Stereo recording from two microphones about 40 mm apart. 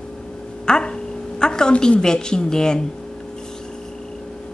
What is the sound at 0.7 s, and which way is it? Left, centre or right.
A woman's voice, centre.